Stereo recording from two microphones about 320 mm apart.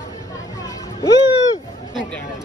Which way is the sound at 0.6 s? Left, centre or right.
Centre.